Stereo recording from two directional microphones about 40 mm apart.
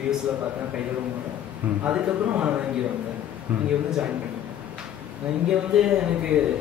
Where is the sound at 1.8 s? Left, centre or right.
Right.